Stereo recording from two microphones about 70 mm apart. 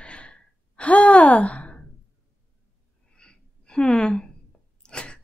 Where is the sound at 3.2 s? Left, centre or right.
Centre.